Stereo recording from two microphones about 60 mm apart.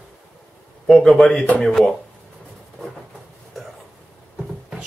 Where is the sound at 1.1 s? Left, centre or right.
Centre.